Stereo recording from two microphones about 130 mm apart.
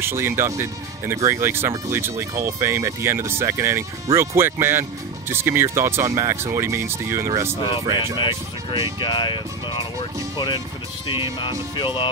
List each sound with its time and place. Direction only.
0.0 s speech: 20° right (ahead or behind)
9.0 s speech: 40° left (ahead or behind)
11.7 s speech: 35° left (ahead or behind)